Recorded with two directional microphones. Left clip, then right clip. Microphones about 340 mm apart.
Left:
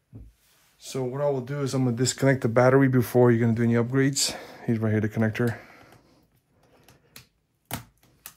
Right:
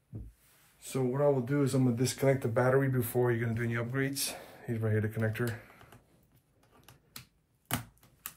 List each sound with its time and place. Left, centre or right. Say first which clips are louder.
0.8 s speech: left 2 dB; centre
2.0 s speech: left 8 dB; left